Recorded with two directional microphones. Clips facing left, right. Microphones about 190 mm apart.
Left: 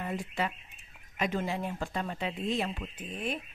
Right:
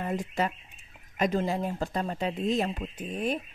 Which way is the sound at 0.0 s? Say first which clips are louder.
Right 4 dB; 45° right (ahead or behind).